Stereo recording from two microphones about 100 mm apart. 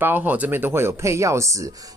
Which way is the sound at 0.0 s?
20° right (ahead or behind).